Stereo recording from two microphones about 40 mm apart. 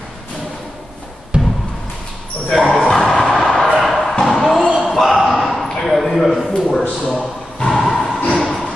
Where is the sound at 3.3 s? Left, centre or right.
Centre.